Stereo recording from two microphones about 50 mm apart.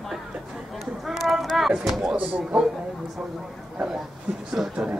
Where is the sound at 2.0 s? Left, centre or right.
Right.